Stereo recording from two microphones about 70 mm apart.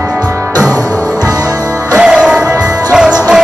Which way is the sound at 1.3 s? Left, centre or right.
Right.